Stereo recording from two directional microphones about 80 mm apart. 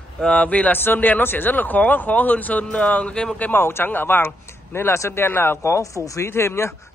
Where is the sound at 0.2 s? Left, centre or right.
Centre.